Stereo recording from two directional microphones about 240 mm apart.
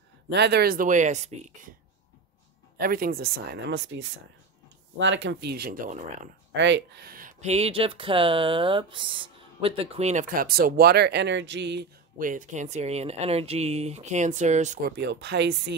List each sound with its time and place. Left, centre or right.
0.3 s speech: right
2.8 s speech: right
6.5 s speech: right
14.9 s speech: right